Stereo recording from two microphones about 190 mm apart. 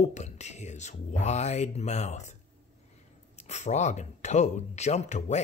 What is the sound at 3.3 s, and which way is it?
Speech, 35° left (ahead or behind).